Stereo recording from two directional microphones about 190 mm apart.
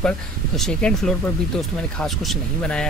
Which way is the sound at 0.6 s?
5° left (ahead or behind).